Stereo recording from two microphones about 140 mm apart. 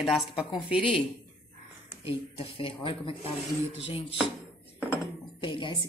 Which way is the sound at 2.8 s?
40° left (ahead or behind).